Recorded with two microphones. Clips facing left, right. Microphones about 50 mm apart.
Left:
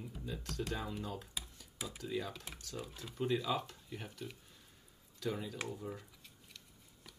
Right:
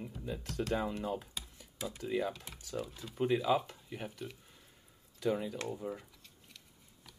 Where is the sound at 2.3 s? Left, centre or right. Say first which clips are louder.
Right 5 dB; centre.